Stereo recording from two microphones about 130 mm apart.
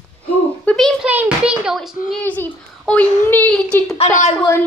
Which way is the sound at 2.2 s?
10° left (ahead or behind).